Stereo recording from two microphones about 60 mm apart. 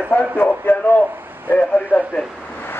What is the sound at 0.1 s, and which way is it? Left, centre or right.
Speech, left.